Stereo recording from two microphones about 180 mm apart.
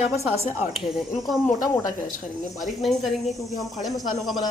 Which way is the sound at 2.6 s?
Centre (ahead or behind).